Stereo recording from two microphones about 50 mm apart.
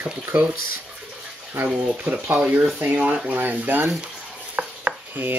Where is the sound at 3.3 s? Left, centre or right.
Right.